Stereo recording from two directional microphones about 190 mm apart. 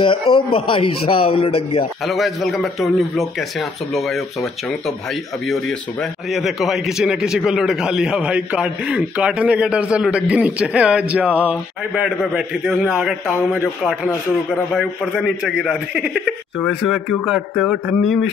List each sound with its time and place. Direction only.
0.0 s a man's voice: 25° left (ahead or behind)
2.0 s a man's voice: centre (ahead or behind)